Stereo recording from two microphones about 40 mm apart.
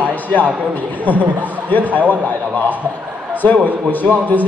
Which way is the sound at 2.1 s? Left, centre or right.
Left.